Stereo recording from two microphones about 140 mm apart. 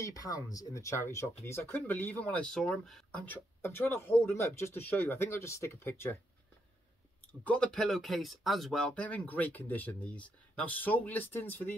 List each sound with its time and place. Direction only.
0.0 s speech: 25° left (ahead or behind)
7.4 s speech: 10° left (ahead or behind)